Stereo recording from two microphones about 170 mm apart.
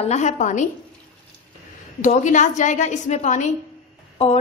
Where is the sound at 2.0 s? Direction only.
45° left (ahead or behind).